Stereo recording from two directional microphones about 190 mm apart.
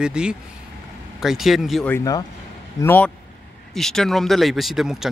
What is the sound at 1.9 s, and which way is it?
Speech, 20° left (ahead or behind).